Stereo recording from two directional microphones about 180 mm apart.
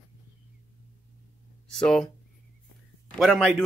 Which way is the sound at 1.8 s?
5° left (ahead or behind).